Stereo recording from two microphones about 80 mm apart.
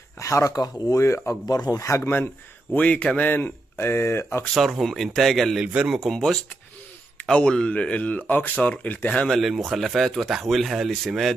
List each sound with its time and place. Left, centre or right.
0.2 s speech: left
0.6 s speech: left
0.9 s speech: left
1.5 s speech: left
2.7 s speech: centre
4.6 s speech: centre
7.2 s speech: centre
9.3 s speech: centre